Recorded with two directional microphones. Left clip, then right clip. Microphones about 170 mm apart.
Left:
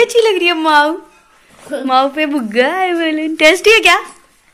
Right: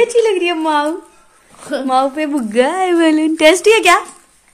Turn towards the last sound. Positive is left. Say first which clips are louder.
# left 1 dB
turn(degrees=-5)  # may be behind; listen again after turning